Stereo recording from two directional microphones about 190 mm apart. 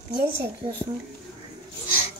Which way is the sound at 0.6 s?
25° right (ahead or behind).